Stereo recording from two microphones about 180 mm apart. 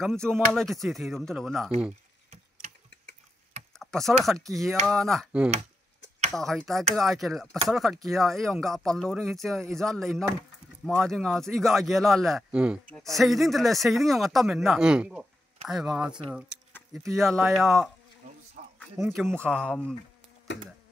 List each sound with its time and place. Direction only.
0.0 s speech: 5° left (ahead or behind)
3.8 s speech: centre (ahead or behind)
17.2 s speech: centre (ahead or behind)
18.6 s a sound: 45° right (ahead or behind)
19.0 s speech: centre (ahead or behind)